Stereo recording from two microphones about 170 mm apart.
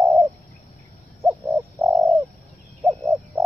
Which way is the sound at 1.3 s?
15° right (ahead or behind).